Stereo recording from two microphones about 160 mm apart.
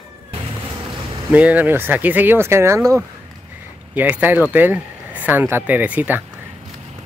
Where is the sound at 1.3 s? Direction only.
10° right (ahead or behind).